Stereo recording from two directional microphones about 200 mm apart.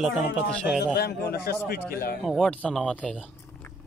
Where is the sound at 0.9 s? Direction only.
55° left (ahead or behind).